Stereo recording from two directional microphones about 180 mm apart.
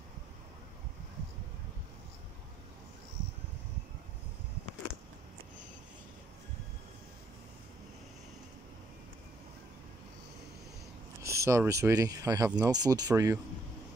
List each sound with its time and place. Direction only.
11.2 s speech: 15° right (ahead or behind)